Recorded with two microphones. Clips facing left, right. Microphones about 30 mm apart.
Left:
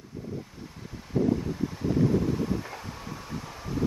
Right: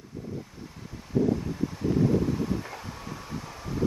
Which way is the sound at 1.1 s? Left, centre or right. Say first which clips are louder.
Right 1 dB; left.